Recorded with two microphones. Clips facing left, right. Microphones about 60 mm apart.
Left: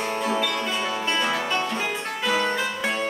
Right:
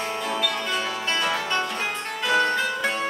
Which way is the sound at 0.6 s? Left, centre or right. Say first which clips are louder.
Left 1 dB; centre.